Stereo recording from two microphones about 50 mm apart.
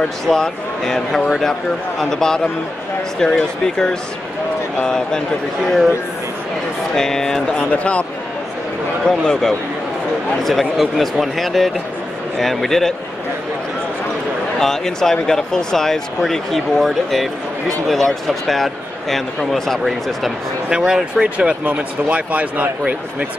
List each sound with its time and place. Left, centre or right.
0.0 s speech: centre
7.0 s speech: centre
7.7 s speech: left
9.0 s a man's voice: centre
14.6 s a man's voice: centre
20.7 s speech: centre